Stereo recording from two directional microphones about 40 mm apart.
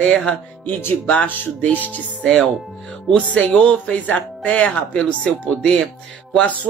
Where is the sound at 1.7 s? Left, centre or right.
Left.